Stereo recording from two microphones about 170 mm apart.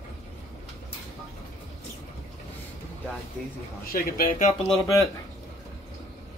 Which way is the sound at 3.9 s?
50° left (ahead or behind).